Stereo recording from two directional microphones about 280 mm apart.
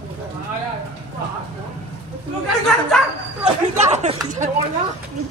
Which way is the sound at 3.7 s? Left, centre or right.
Right.